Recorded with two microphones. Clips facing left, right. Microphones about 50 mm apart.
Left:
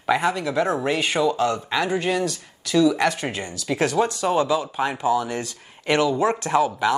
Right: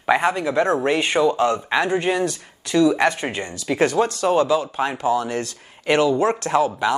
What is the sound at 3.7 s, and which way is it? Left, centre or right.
Speech, centre.